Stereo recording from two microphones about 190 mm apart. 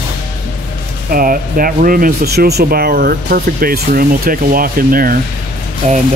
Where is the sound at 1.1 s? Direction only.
50° right (ahead or behind).